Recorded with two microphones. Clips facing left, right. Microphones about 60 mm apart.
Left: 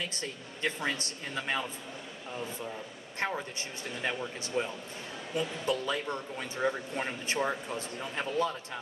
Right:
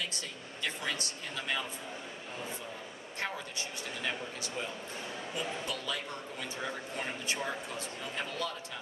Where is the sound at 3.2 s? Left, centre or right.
Left.